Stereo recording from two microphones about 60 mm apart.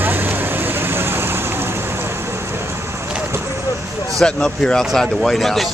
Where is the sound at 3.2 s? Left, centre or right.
Right.